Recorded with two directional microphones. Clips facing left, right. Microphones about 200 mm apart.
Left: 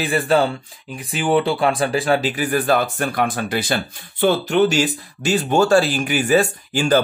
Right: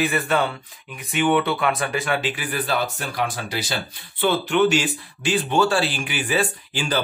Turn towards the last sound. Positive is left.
turn(degrees=45)  # may be behind; listen again after turning